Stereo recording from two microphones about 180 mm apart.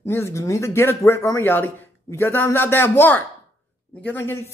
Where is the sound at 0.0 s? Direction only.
15° left (ahead or behind).